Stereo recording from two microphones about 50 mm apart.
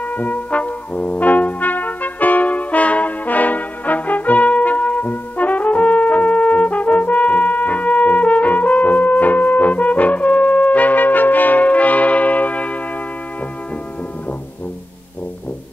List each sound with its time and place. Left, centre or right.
0.1 s brass instrument: left